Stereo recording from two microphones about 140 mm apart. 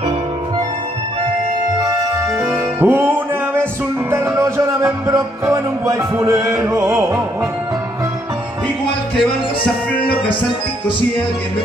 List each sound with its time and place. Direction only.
2.4 s music: 15° right (ahead or behind)